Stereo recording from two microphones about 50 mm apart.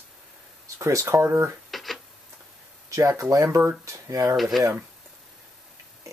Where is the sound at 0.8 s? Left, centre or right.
Right.